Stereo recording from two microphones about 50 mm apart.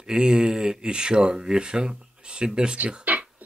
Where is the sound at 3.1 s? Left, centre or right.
Right.